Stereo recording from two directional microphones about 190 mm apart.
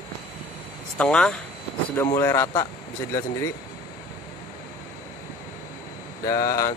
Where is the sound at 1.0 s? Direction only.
5° left (ahead or behind).